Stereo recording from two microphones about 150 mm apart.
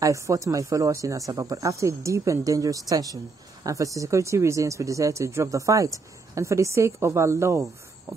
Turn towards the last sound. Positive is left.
turn(degrees=-20)  # may be behind; listen again after turning